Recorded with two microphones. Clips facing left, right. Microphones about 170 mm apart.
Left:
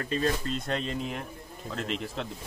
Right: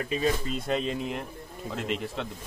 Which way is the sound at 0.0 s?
10° right (ahead or behind).